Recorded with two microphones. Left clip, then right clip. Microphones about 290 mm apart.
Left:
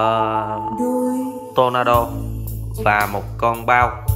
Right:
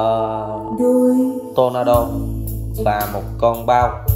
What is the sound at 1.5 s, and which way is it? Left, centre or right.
Speech, left.